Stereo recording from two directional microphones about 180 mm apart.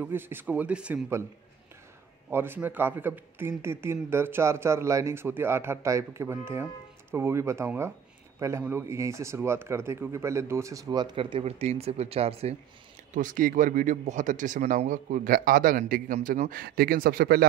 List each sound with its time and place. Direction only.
0.0 s a man's voice: 10° right (ahead or behind)
2.3 s a man's voice: 10° right (ahead or behind); by 12.5 s 35° right (ahead or behind)
13.1 s a man's voice: 45° right (ahead or behind)